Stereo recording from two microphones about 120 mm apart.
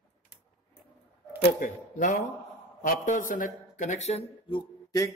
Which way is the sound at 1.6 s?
90° left.